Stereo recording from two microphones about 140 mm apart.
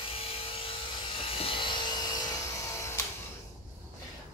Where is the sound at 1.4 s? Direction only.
40° left (ahead or behind).